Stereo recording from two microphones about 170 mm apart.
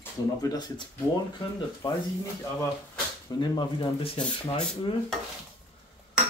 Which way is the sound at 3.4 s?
25° left (ahead or behind).